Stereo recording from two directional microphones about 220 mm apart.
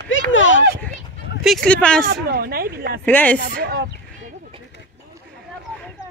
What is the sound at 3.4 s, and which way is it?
Speech, 45° right (ahead or behind).